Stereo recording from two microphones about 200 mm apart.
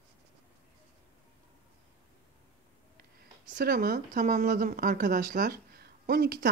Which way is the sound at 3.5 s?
45° right (ahead or behind).